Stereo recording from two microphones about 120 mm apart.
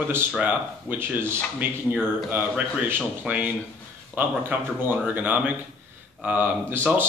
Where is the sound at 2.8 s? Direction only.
15° right (ahead or behind).